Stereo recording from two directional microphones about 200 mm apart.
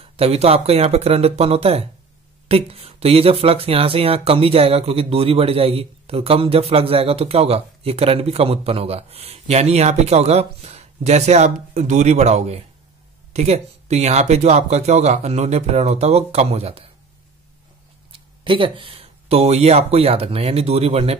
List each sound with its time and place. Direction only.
0.0 s speech: 30° right (ahead or behind)
18.1 s speech: 25° right (ahead or behind)